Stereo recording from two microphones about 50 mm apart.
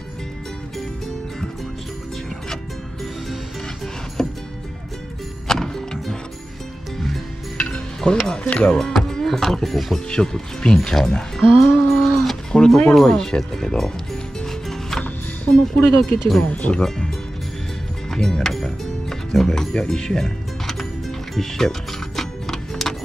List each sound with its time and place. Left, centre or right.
4.2 s music: centre
5.5 s music: centre
7.5 s music: left
8.0 s speech: centre
8.5 s speech: left
9.0 s speech: centre
10.0 s speech: centre
11.5 s a sound: centre
12.5 s speech: centre
14.4 s music: centre
15.5 s speech: centre
16.3 s speech: left
18.1 s music: centre